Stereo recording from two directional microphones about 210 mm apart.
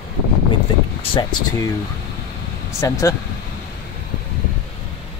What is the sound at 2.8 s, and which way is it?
Speech, 15° left (ahead or behind).